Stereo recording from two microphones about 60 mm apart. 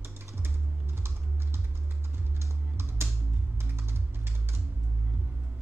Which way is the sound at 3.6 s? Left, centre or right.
Right.